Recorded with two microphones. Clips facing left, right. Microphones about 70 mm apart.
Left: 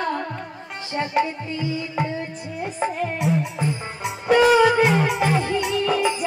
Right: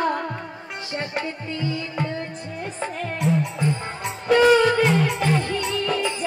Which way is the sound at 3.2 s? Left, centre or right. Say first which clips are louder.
Right 3 dB; centre.